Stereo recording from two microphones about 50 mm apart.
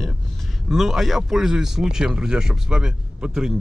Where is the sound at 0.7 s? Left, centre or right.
Centre.